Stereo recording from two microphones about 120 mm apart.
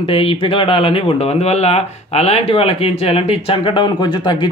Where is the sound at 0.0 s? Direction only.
50° left (ahead or behind).